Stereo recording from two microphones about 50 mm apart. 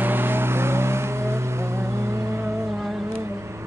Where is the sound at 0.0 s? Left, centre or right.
Right.